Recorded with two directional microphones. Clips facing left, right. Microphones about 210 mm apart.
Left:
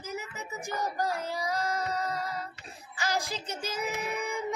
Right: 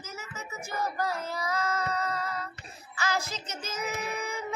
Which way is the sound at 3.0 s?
15° left (ahead or behind).